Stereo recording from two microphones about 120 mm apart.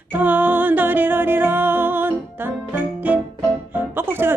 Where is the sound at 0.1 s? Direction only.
15° right (ahead or behind).